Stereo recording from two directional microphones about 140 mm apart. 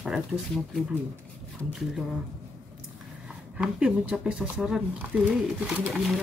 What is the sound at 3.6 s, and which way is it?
Speech, 5° right (ahead or behind).